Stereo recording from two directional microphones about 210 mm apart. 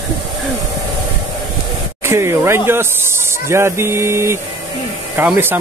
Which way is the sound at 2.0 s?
10° right (ahead or behind).